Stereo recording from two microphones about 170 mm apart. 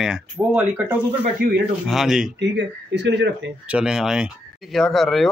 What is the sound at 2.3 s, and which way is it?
Speech, 90° right.